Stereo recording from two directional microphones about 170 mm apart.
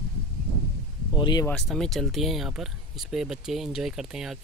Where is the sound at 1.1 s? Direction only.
25° left (ahead or behind).